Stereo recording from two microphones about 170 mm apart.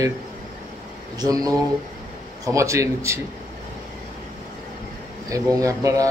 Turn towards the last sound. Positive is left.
turn(degrees=-20)  # may be behind; listen again after turning